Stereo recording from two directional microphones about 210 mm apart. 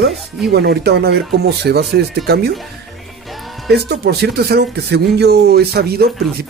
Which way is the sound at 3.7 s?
50° right (ahead or behind).